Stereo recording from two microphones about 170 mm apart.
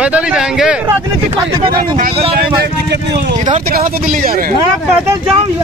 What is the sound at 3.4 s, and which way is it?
Speech, 50° right (ahead or behind).